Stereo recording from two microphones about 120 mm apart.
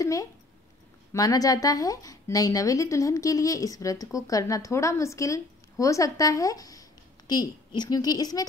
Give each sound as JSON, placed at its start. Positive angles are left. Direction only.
{"t": 0.0, "sound": "a woman's voice", "side_deg": 25}